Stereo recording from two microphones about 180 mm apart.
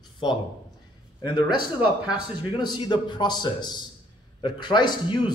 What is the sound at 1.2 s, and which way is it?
Speech, 25° left (ahead or behind).